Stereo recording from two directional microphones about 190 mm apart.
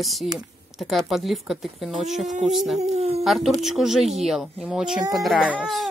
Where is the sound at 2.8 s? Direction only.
35° right (ahead or behind).